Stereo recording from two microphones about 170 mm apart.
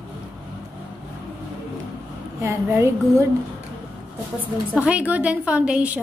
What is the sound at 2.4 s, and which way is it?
Speech, 15° right (ahead or behind).